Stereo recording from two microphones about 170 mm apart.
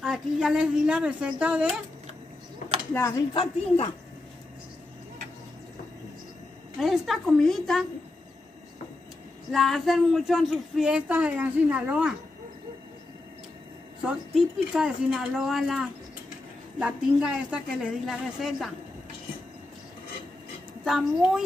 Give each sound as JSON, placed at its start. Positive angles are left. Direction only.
{"t": 0.0, "sound": "speech", "side_deg": -5}
{"t": 2.9, "sound": "speech", "side_deg": 15}
{"t": 3.3, "sound": "speech", "side_deg": 35}
{"t": 6.8, "sound": "speech", "side_deg": 0}
{"t": 9.5, "sound": "speech", "side_deg": 0}
{"t": 14.0, "sound": "speech", "side_deg": -5}
{"t": 20.8, "sound": "speech", "side_deg": 0}